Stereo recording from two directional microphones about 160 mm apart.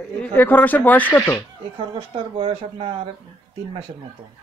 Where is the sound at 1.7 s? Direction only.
30° right (ahead or behind).